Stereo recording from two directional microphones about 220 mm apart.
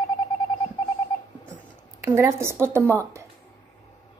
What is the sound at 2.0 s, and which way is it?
A woman's voice, 15° right (ahead or behind).